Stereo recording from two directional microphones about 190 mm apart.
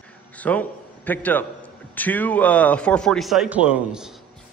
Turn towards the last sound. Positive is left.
turn(degrees=-5)  # may be behind; listen again after turning